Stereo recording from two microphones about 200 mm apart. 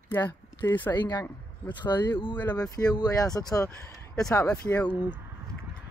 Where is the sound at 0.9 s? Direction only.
20° left (ahead or behind).